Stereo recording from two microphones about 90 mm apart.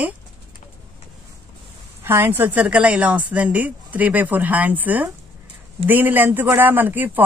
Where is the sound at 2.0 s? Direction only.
25° right (ahead or behind).